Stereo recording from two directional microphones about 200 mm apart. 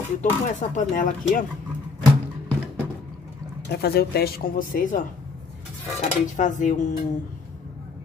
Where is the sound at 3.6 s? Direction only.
55° left (ahead or behind).